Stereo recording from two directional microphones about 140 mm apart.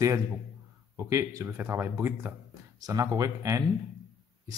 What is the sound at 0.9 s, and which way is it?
Speech, 20° right (ahead or behind).